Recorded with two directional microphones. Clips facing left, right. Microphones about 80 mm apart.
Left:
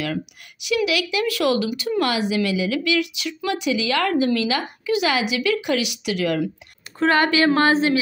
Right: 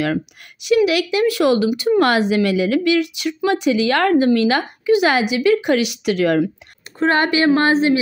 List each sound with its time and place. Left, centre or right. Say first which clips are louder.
0.7 s a woman's voice: right 6 dB; right
2.0 s a woman's voice: right 4 dB; right
7.0 s speech: right 1 dB; right